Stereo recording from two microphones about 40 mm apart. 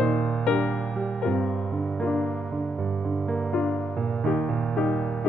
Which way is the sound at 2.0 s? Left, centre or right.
Centre.